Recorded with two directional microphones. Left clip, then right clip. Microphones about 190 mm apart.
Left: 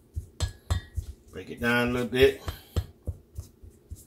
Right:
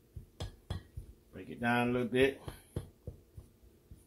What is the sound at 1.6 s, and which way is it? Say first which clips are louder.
Speech: left 6 dB; 30° right (ahead or behind).